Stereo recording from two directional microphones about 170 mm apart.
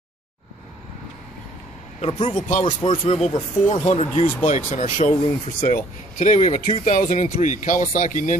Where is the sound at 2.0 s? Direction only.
35° left (ahead or behind).